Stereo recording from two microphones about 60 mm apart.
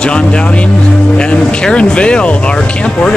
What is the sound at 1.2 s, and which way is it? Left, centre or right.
Music, centre.